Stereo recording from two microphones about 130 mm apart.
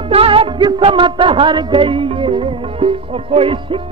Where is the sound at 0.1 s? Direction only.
45° right (ahead or behind).